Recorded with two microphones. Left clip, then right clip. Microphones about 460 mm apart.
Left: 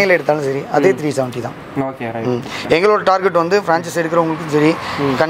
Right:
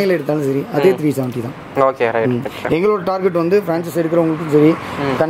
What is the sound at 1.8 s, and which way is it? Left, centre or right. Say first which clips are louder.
Speech: right 9 dB; right.